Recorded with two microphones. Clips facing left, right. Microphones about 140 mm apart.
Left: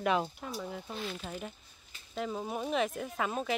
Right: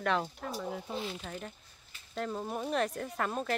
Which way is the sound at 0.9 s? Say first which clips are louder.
Even; 25° right (ahead or behind).